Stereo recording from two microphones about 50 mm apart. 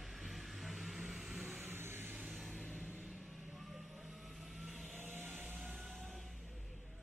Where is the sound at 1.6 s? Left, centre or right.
Right.